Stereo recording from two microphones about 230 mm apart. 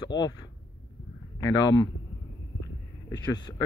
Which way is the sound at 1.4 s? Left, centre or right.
Centre.